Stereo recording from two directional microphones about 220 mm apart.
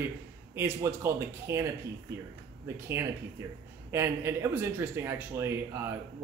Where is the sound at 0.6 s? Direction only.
10° right (ahead or behind).